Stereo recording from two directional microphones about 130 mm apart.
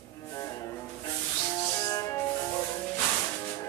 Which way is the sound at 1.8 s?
25° left (ahead or behind).